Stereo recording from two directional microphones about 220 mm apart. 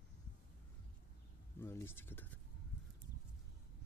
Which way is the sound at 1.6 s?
10° left (ahead or behind).